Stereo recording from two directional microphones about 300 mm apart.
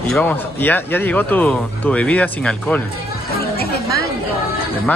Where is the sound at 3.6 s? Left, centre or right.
Left.